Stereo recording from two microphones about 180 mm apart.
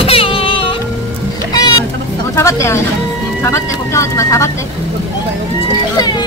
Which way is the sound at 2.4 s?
15° left (ahead or behind).